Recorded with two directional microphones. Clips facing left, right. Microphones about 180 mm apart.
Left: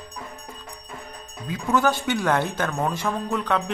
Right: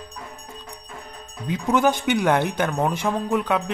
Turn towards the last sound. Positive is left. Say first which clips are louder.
# right 2 dB
turn(degrees=-10)  # may be behind; listen again after turning